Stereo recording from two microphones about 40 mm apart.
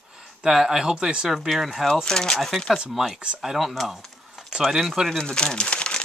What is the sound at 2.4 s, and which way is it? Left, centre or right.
Speech, centre.